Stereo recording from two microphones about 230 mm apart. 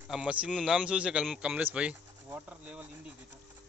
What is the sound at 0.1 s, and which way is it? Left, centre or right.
Speech, centre.